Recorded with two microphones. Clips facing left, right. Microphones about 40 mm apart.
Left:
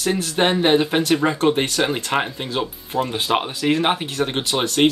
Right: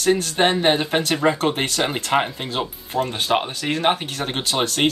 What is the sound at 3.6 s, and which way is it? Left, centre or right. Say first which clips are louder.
Speech: left 5 dB; centre.